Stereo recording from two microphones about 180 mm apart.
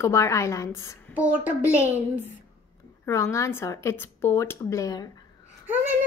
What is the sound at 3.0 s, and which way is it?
A woman's voice, 15° left (ahead or behind).